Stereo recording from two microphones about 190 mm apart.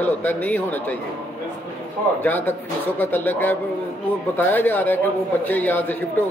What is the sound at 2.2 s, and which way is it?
A man's voice, 10° left (ahead or behind).